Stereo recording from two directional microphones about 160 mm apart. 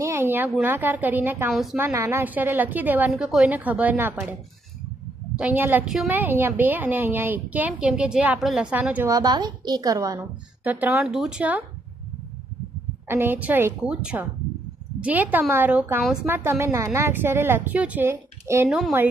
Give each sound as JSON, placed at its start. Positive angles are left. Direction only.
{"t": 0.0, "sound": "a woman's voice", "side_deg": -15}
{"t": 1.5, "sound": "speech", "side_deg": 0}
{"t": 1.8, "sound": "a woman's voice", "side_deg": -15}
{"t": 9.1, "sound": "a woman's voice", "side_deg": -25}
{"t": 10.6, "sound": "a woman's voice", "side_deg": -10}
{"t": 13.1, "sound": "a woman's voice", "side_deg": -15}
{"t": 18.7, "sound": "speech", "side_deg": -5}